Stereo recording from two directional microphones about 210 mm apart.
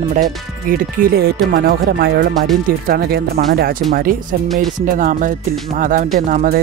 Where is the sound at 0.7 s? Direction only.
45° right (ahead or behind).